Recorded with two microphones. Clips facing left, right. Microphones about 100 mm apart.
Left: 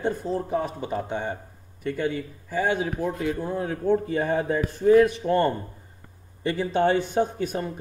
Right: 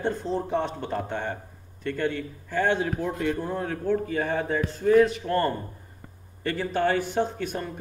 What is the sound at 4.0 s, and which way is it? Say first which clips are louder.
A man's voice: left 2 dB; 25° left (ahead or behind).